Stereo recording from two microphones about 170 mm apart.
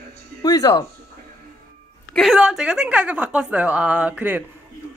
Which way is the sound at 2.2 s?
5° right (ahead or behind).